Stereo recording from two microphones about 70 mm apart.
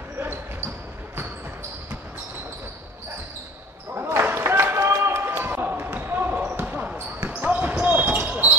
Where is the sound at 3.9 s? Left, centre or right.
Right.